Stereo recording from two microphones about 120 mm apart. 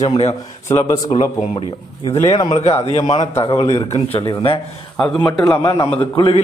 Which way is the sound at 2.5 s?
65° left (ahead or behind).